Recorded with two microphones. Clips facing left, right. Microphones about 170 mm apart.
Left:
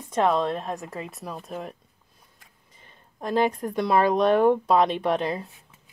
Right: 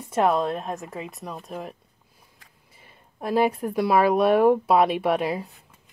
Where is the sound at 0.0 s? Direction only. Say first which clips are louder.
Right 1 dB; 5° right (ahead or behind).